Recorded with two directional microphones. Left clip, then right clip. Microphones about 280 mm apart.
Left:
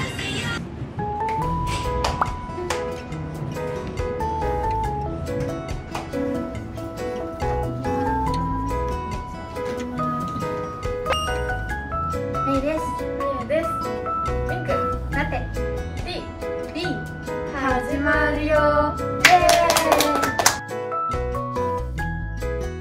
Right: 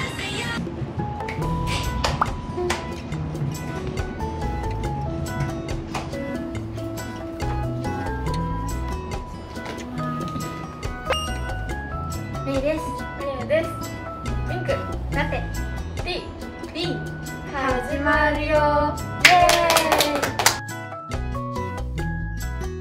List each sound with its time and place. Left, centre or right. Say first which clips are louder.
0.0 s music: even; right
2.2 s music: right 2 dB; centre
4.2 s music: left 8 dB; centre
7.4 s music: left 4 dB; centre
9.9 s music: left 1 dB; centre
16.7 s music: even; centre